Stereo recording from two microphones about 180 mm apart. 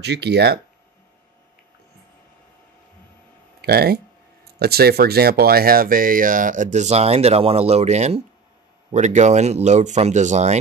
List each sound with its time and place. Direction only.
0.0 s speech: 70° right (ahead or behind)
3.6 s speech: 60° right (ahead or behind); by 10.6 s 40° right (ahead or behind)